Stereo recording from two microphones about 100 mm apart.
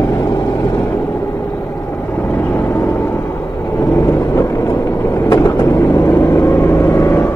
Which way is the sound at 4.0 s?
30° left (ahead or behind).